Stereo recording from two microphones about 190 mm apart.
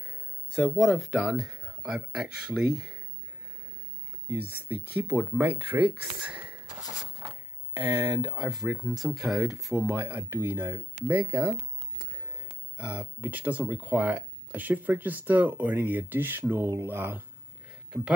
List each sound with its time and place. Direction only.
0.6 s speech: centre (ahead or behind)
4.3 s speech: 10° right (ahead or behind)
7.8 s speech: 10° right (ahead or behind)
8.5 s speech: 5° right (ahead or behind)
12.7 s speech: 10° right (ahead or behind)